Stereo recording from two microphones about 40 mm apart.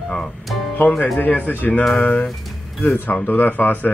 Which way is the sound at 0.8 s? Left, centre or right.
Left.